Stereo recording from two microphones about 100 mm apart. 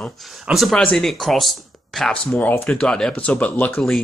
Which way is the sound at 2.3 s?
20° left (ahead or behind).